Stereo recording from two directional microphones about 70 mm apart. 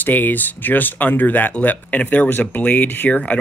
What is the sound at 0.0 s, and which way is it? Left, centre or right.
Speech, left.